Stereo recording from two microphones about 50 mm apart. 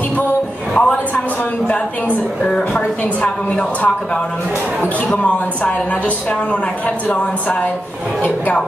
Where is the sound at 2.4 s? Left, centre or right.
Centre.